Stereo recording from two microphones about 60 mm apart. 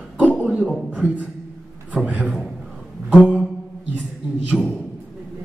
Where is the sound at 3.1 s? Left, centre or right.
Centre.